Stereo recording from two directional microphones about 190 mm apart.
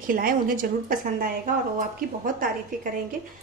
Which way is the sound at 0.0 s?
45° right (ahead or behind).